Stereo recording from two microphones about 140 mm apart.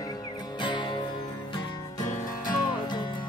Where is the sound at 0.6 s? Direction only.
35° left (ahead or behind).